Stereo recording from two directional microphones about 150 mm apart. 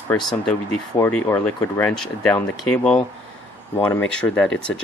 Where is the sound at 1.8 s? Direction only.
5° left (ahead or behind).